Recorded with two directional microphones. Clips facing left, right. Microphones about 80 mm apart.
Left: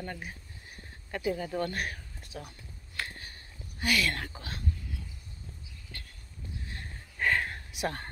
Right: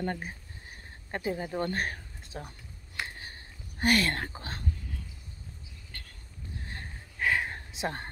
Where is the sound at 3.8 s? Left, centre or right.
Right.